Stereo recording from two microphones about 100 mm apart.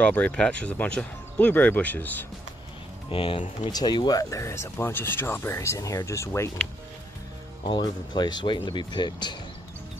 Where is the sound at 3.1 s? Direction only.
65° left (ahead or behind).